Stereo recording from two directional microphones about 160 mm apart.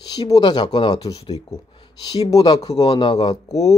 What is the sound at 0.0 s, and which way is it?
Speech, 25° left (ahead or behind).